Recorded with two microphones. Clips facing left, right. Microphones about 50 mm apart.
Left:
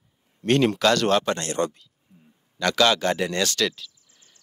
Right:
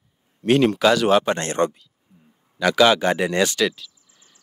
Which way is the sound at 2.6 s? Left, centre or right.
Centre.